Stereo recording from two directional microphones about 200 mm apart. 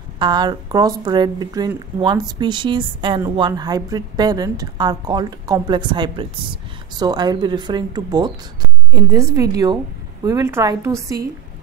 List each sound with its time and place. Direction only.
0.2 s a woman's voice: 20° right (ahead or behind)